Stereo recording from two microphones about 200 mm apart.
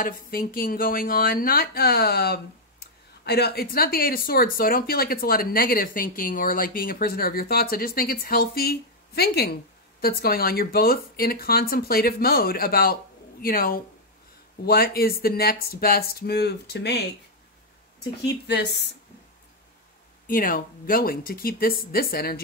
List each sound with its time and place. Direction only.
0.0 s speech: 45° left (ahead or behind)
18.2 s speech: 55° left (ahead or behind)
20.2 s speech: 45° left (ahead or behind)